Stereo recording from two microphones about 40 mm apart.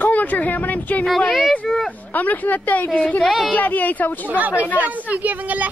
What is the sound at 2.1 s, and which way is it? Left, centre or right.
Speech, left.